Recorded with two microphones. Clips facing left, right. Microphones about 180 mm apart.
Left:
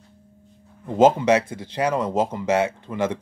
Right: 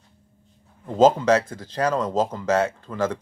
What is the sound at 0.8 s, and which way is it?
Speech, 10° left (ahead or behind).